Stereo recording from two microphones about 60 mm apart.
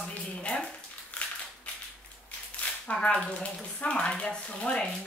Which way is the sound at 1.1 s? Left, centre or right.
Centre.